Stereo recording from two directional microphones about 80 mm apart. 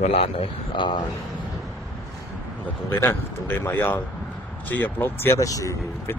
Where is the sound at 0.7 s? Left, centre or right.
Left.